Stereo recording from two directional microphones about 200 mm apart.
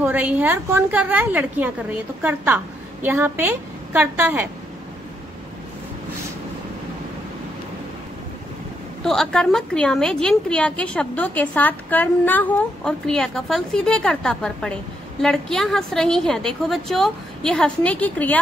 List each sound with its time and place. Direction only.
0.0 s a woman's voice: 10° right (ahead or behind)
9.0 s a woman's voice: 5° left (ahead or behind)